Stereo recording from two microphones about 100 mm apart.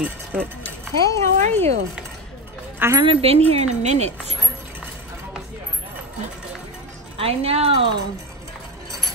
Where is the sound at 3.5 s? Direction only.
90° right.